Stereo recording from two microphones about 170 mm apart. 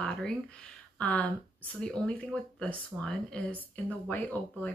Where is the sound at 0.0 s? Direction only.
5° left (ahead or behind).